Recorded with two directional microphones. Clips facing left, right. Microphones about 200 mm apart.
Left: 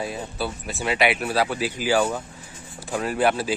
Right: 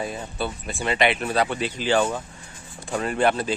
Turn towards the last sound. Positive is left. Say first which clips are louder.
# even
turn(degrees=5)  # may be behind; listen again after turning